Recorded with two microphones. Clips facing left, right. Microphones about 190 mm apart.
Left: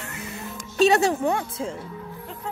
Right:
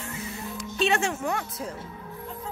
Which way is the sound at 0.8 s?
40° left (ahead or behind).